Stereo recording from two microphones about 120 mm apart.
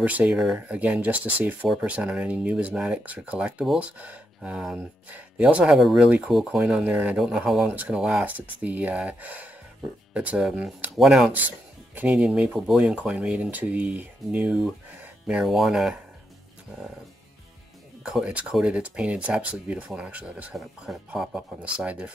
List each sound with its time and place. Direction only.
0.0 s speech: 10° right (ahead or behind)
18.0 s speech: 10° right (ahead or behind)